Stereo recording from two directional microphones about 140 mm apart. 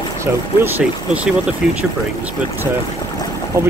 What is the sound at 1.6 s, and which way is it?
Speech, 5° right (ahead or behind).